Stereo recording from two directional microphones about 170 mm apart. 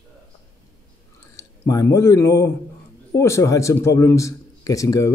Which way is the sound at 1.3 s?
20° left (ahead or behind).